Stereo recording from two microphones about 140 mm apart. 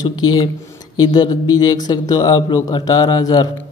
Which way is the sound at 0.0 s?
30° left (ahead or behind).